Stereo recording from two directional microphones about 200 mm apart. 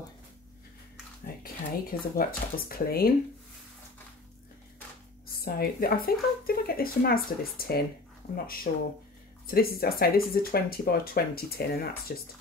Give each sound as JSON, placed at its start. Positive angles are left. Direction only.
{"t": 1.2, "sound": "a sound", "side_deg": 45}
{"t": 2.7, "sound": "speech", "side_deg": 50}
{"t": 5.4, "sound": "speech", "side_deg": 50}
{"t": 9.5, "sound": "speech", "side_deg": 50}